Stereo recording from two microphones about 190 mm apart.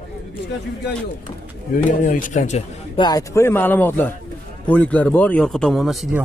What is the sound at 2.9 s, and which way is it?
Speech, 20° left (ahead or behind).